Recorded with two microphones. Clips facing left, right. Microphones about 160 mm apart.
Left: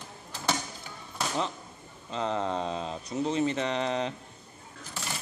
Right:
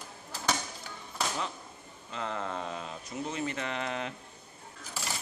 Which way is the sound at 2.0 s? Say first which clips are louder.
Left 6 dB; 25° left (ahead or behind).